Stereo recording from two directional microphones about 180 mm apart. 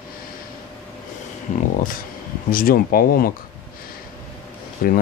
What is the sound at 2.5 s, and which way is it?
Speech, 50° left (ahead or behind).